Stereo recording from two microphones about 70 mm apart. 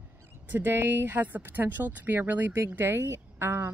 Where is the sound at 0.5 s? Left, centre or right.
Right.